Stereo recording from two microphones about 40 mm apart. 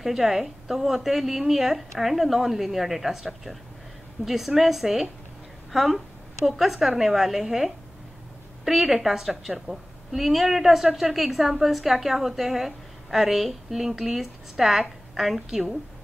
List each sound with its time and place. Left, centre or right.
0.0 s a woman's voice: centre